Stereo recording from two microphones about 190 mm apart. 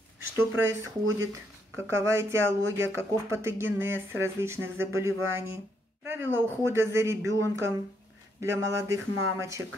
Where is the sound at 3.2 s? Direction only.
15° right (ahead or behind).